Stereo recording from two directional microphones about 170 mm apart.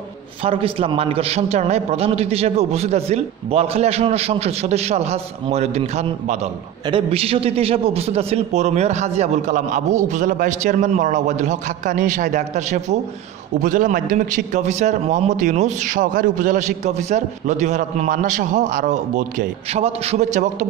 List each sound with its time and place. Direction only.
0.4 s a man's voice: 35° right (ahead or behind)